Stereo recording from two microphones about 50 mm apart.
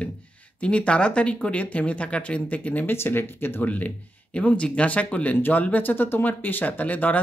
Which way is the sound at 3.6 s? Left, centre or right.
Left.